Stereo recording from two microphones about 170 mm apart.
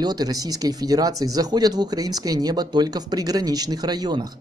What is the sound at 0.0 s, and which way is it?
Speech, 25° right (ahead or behind).